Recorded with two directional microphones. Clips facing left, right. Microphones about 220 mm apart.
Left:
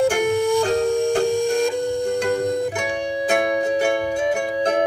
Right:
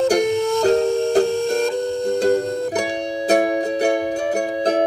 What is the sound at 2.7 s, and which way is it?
Music, 35° right (ahead or behind).